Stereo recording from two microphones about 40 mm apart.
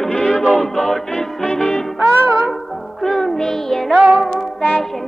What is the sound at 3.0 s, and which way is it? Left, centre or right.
Music, centre.